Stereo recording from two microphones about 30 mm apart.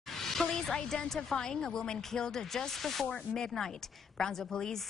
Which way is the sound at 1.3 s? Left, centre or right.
Left.